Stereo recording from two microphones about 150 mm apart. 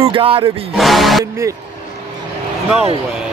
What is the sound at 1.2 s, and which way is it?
Speech, 20° right (ahead or behind).